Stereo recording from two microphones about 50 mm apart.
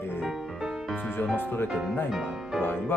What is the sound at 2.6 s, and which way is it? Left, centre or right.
Speech, left.